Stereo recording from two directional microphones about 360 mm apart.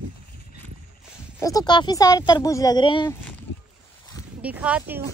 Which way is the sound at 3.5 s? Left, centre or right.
Left.